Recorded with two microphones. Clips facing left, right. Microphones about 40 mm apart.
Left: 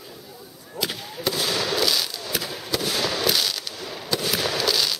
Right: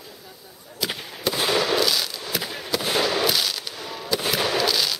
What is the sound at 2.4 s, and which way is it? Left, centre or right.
Fireworks, centre.